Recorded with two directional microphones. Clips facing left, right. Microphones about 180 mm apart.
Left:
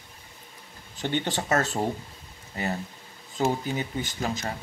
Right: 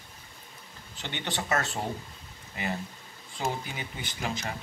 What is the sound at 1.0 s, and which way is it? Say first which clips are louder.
Speech: left 7 dB; 45° left (ahead or behind).